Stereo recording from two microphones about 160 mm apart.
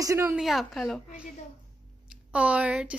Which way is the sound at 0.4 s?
Centre (ahead or behind).